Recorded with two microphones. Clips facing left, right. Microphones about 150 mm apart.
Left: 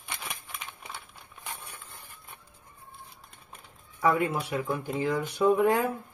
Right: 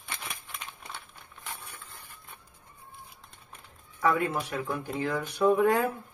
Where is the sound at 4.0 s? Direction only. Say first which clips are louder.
Left 1 dB; 15° left (ahead or behind).